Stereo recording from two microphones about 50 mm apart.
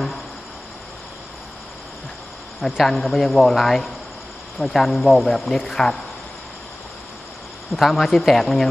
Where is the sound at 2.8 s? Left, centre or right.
Centre.